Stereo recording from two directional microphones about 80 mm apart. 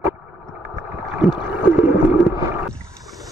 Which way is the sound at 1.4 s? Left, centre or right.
Right.